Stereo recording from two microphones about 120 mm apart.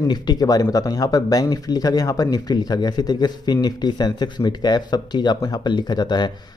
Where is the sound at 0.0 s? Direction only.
35° left (ahead or behind).